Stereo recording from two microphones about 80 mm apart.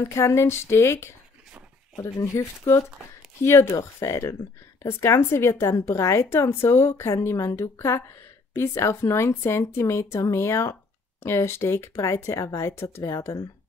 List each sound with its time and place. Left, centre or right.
0.0 s speech: left